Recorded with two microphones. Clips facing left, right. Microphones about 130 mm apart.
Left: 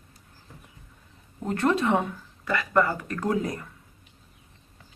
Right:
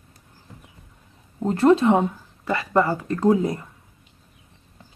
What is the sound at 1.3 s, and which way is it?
Speech, 30° right (ahead or behind).